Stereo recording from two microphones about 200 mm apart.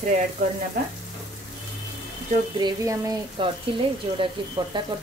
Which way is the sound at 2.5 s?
20° right (ahead or behind).